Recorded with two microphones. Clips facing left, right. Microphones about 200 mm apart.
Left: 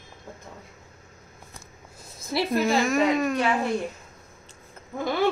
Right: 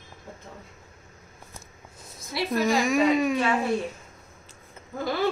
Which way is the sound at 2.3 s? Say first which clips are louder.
Left 1 dB; 30° left (ahead or behind).